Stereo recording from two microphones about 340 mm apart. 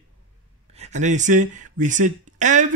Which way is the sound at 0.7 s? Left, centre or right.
Centre.